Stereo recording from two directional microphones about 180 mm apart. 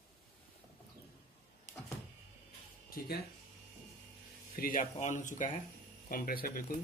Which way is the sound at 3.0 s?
55° left (ahead or behind).